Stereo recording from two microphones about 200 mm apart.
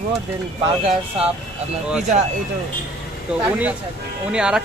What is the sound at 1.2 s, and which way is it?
Speech, 30° right (ahead or behind).